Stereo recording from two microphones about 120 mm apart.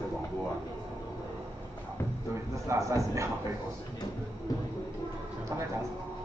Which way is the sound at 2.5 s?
25° right (ahead or behind).